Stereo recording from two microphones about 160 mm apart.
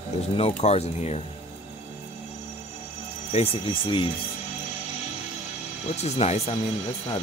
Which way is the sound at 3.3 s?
35° left (ahead or behind).